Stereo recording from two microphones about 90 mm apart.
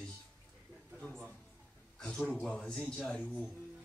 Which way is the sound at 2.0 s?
10° left (ahead or behind).